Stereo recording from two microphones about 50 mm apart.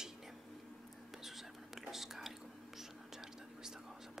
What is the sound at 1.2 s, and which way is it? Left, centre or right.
Whispering, centre.